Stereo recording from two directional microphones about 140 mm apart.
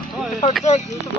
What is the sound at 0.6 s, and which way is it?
Speech, 55° left (ahead or behind).